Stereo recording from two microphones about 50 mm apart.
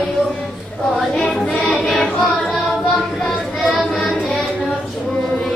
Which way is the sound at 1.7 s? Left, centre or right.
Centre.